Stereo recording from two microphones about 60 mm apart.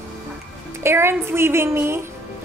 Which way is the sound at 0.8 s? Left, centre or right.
Right.